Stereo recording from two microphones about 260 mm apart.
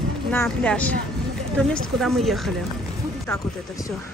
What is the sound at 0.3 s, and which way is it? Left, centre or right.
A woman's voice, centre.